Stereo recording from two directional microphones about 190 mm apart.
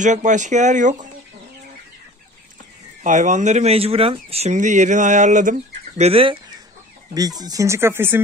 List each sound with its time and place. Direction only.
0.0 s speech: 40° right (ahead or behind)
3.0 s speech: 40° right (ahead or behind)
7.2 s speech: 20° right (ahead or behind)